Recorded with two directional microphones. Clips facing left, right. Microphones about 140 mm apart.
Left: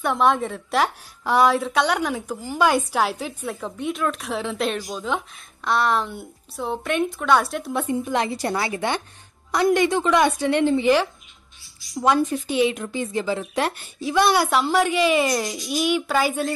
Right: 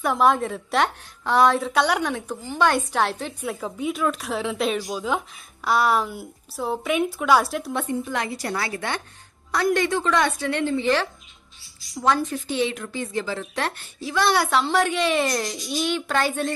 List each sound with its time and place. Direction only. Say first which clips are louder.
0.0 s speech: even; centre (ahead or behind)
7.8 s a woman's voice: left 3 dB; 20° left (ahead or behind)
14.3 s speech: left 1 dB; centre (ahead or behind)